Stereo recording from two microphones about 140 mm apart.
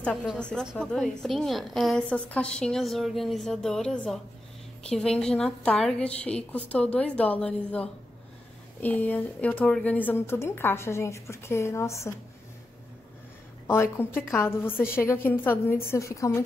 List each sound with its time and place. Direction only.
0.0 s a woman's voice: 10° left (ahead or behind)
14.0 s speech: 15° left (ahead or behind)